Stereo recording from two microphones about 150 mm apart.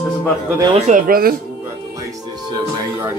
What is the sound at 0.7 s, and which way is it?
Speech, 55° right (ahead or behind).